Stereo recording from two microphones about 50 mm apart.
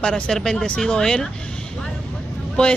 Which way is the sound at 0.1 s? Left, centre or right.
Centre.